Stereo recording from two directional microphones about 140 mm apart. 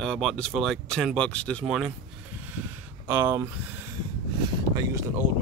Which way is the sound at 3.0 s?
15° right (ahead or behind).